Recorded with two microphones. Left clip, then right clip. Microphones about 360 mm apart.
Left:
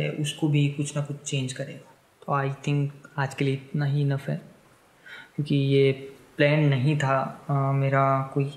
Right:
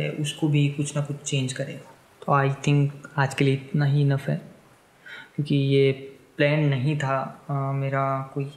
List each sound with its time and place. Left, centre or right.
0.0 s speech: centre; by 1.8 s right
2.2 s speech: right
5.0 s speech: centre; by 8.5 s left